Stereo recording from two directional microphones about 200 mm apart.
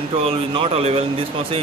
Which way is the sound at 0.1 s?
30° right (ahead or behind).